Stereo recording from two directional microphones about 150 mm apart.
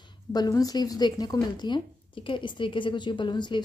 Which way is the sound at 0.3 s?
25° left (ahead or behind).